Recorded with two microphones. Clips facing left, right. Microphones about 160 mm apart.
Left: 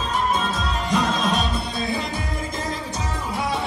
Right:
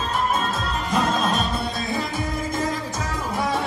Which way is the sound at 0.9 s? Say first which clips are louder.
Even; 50° right (ahead or behind).